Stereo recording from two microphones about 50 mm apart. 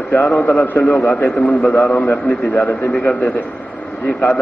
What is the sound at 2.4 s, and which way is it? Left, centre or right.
A man's voice, left.